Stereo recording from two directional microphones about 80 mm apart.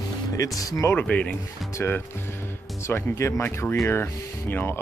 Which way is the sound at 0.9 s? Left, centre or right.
Centre.